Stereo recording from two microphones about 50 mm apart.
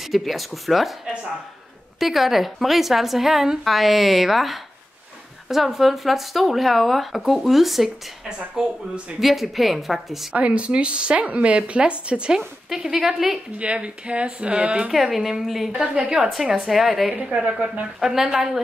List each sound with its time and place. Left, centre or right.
0.0 s a woman's voice: centre
2.0 s a woman's voice: centre
10.3 s speech: right
12.4 s a woman's voice: centre
13.6 s speech: right
14.9 s a woman's voice: centre
15.7 s speech: right
16.5 s a woman's voice: centre
17.2 s a woman's voice: centre
17.5 s speech: right
18.0 s a woman's voice: centre